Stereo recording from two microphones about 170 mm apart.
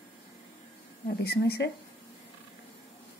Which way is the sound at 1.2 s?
70° left (ahead or behind).